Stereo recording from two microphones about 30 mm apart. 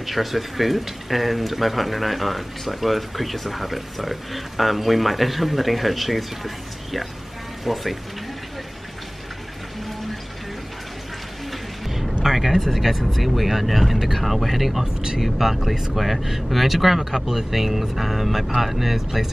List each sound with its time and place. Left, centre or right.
0.0 s speech: centre
11.9 s a sound: centre
12.5 s speech: centre
14.8 s speech: right
15.1 s speech: centre